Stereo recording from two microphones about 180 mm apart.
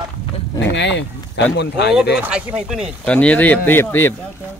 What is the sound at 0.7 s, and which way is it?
Speech, 75° left (ahead or behind).